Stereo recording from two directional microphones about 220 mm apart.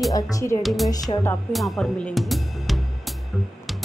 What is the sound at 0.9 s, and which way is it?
Speech, 15° left (ahead or behind).